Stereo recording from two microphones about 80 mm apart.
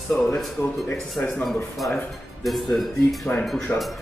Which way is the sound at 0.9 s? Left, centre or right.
Centre.